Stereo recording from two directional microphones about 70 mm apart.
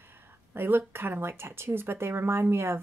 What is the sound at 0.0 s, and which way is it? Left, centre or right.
Speech, right.